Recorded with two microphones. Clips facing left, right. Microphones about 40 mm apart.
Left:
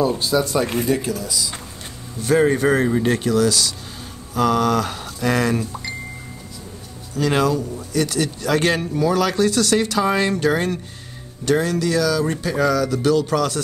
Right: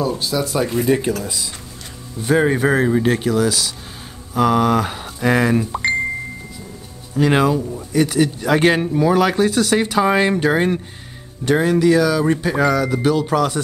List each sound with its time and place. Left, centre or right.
0.2 s speech: centre
0.8 s speech: right
2.2 s speech: centre
5.7 s chime: right
7.2 s speech: right